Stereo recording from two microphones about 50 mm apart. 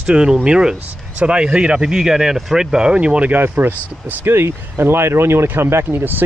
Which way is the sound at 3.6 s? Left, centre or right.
Right.